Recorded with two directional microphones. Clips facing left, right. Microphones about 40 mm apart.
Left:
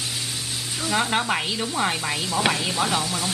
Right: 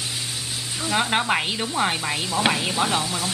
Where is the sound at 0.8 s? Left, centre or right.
Centre.